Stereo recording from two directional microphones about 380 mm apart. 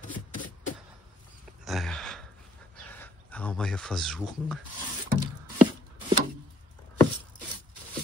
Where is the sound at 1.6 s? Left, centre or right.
Centre.